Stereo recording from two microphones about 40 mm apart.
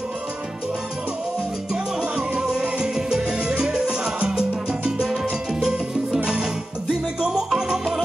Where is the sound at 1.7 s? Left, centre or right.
Centre.